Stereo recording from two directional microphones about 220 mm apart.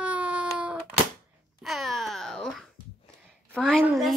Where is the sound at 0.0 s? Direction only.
5° right (ahead or behind).